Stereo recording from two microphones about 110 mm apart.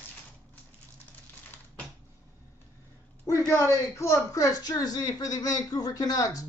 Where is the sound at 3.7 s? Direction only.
30° left (ahead or behind).